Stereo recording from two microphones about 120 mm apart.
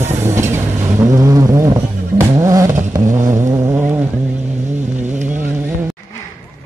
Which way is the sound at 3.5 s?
25° right (ahead or behind).